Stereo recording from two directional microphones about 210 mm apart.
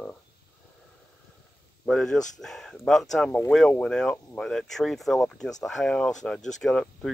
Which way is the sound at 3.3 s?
10° left (ahead or behind).